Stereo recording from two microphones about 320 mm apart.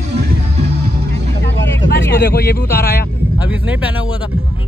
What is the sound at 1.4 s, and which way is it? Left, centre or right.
Vehicle, left.